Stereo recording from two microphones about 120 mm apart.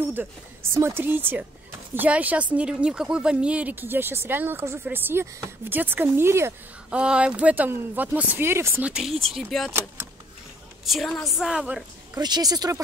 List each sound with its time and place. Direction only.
0.1 s speech: 20° right (ahead or behind)
6.9 s speech: 10° right (ahead or behind)
8.8 s a woman's voice: 5° right (ahead or behind)
10.9 s a woman's voice: 5° left (ahead or behind)
12.2 s speech: 35° right (ahead or behind)